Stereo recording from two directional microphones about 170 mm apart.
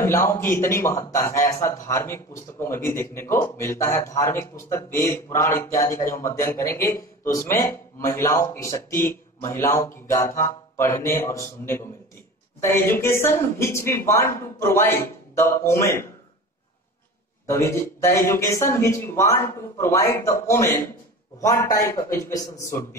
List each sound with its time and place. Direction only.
0.0 s a man's voice: 15° left (ahead or behind)
17.5 s a man's voice: 15° left (ahead or behind)